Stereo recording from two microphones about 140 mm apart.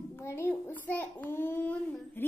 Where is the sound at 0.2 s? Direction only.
20° left (ahead or behind).